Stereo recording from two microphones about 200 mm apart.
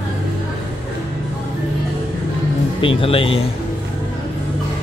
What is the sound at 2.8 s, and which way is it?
Speech, 25° left (ahead or behind).